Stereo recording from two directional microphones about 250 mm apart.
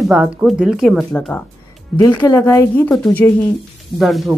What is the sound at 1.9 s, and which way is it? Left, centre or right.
Speech, centre.